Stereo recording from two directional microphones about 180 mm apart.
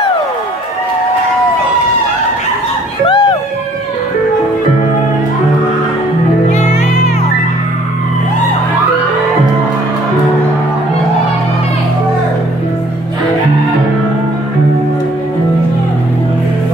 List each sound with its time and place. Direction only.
3.1 s music: 25° left (ahead or behind)
6.5 s music: 40° left (ahead or behind)